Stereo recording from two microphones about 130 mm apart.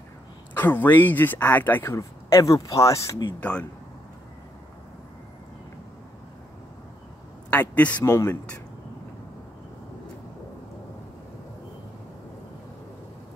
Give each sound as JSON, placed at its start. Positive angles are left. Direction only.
{"t": 0.6, "sound": "speech", "side_deg": 15}
{"t": 3.3, "sound": "speech", "side_deg": 10}
{"t": 7.5, "sound": "speech", "side_deg": 10}
{"t": 8.0, "sound": "speech", "side_deg": 20}